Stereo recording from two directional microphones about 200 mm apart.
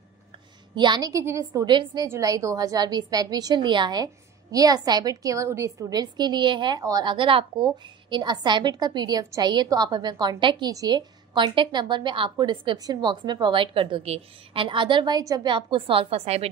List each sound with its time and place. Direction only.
0.7 s a woman's voice: 20° right (ahead or behind)